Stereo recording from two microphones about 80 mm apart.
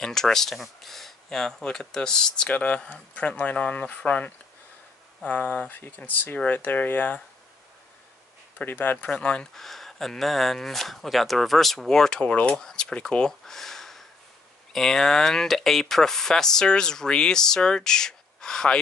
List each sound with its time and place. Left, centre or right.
0.0 s speech: centre
8.5 s speech: left